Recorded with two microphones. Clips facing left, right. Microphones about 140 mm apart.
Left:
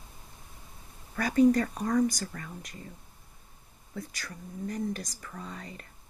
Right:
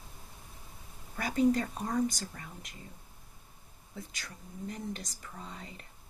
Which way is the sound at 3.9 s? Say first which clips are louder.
Left 5 dB; 25° right (ahead or behind).